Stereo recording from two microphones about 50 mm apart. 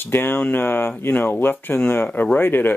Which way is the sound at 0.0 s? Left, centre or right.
Left.